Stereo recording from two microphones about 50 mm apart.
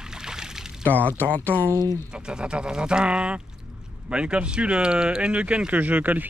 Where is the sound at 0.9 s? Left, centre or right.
Left.